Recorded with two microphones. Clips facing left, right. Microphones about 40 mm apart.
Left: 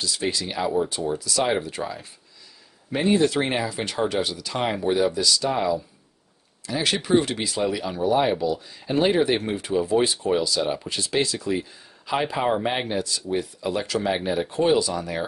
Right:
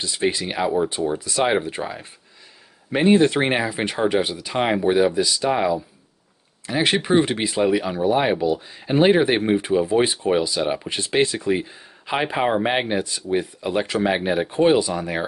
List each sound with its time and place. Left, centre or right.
0.0 s speech: right